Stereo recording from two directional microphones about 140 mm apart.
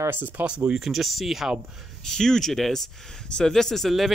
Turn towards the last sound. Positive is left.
turn(degrees=0)  # may be behind; listen again after turning